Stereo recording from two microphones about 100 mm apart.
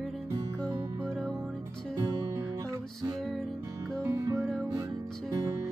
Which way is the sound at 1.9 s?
40° right (ahead or behind).